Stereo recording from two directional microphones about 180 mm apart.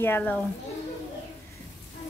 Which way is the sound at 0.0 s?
10° left (ahead or behind).